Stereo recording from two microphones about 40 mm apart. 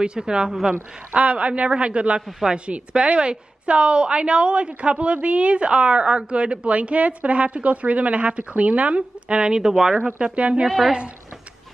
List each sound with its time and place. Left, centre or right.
0.0 s a woman's voice: right
0.5 s speech: centre
1.1 s a man's voice: right
10.0 s a woman's voice: right